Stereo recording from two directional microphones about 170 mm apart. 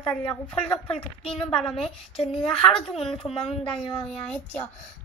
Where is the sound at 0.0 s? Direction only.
5° left (ahead or behind).